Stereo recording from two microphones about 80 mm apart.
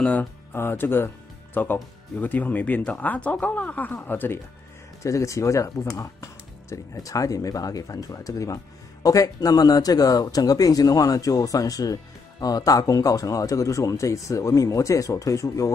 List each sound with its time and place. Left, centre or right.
0.0 s speech: centre
5.0 s speech: left